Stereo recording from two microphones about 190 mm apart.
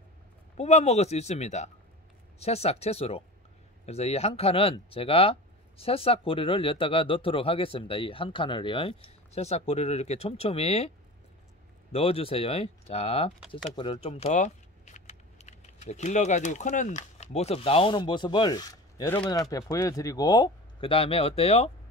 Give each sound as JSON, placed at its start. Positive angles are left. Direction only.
{"t": 0.6, "sound": "speech", "side_deg": 35}
{"t": 11.9, "sound": "speech", "side_deg": 30}